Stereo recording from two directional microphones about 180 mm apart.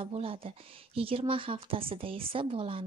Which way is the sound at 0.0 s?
30° right (ahead or behind).